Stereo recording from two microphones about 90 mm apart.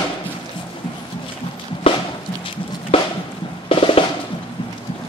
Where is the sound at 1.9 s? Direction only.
75° left (ahead or behind).